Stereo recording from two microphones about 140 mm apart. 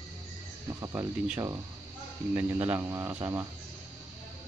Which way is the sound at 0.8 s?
25° right (ahead or behind).